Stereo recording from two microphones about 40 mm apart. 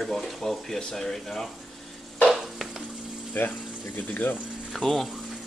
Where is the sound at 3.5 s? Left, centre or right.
Left.